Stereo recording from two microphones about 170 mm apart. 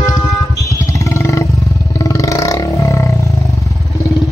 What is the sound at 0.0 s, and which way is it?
Music, 20° left (ahead or behind).